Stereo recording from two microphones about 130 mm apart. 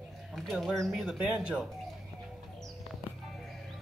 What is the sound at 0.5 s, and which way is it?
Speech, centre (ahead or behind).